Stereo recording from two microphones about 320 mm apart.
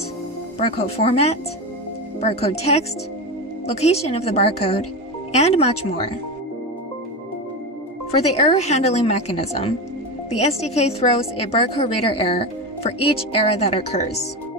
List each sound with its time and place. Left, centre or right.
0.6 s a woman's voice: centre
8.1 s a woman's voice: centre